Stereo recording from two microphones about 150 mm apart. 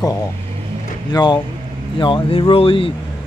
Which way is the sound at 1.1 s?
30° left (ahead or behind).